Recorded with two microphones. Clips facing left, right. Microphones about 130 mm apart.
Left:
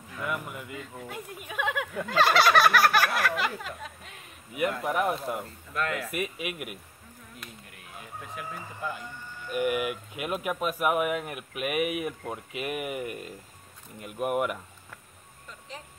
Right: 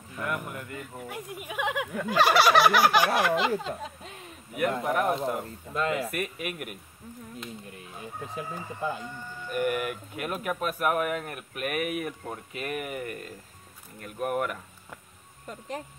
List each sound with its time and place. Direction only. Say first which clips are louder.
0.5 s speech: right 1 dB; 5° left (ahead or behind)
0.9 s speech: right 2 dB; 15° right (ahead or behind); by 4.1 s 30° right (ahead or behind)
4.8 s speech: even; centre (ahead or behind)
5.1 s speech: right 3 dB; 25° right (ahead or behind)
6.1 s speech: even; 5° left (ahead or behind)
7.3 s speech: right 6 dB; 30° right (ahead or behind)
9.5 s speech: left 1 dB; 5° left (ahead or behind)